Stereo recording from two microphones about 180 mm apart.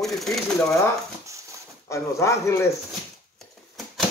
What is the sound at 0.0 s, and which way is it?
Speech, centre (ahead or behind).